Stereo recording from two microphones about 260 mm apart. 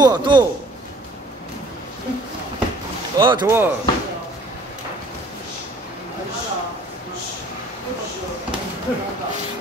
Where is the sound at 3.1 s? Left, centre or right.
Centre.